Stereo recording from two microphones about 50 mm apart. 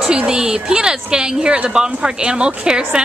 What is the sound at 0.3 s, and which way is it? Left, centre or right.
A woman's voice, centre.